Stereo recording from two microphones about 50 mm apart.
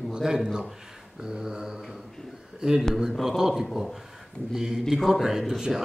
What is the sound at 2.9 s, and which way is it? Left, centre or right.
A man's voice, centre.